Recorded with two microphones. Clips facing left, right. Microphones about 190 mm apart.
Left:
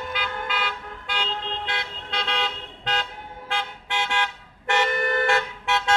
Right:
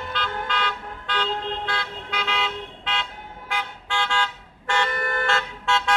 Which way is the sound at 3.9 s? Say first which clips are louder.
Right 1 dB; 20° left (ahead or behind).